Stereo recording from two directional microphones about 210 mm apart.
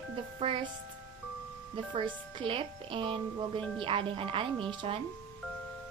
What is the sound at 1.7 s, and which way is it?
A woman's voice, 25° right (ahead or behind).